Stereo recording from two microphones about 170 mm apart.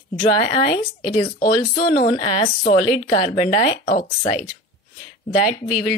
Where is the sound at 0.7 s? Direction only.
45° left (ahead or behind).